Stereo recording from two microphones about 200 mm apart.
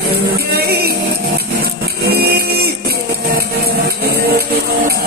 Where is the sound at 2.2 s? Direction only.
50° right (ahead or behind).